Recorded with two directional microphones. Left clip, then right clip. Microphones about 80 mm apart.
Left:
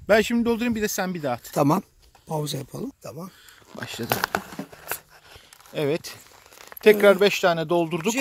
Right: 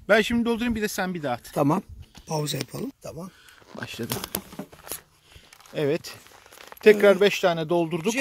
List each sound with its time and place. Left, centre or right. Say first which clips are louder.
0.0 s speech: left 1 dB; left
1.5 s speech: left 3 dB; left; by 3.3 s centre
3.8 s speech: left 1 dB; centre
5.7 s speech: even; centre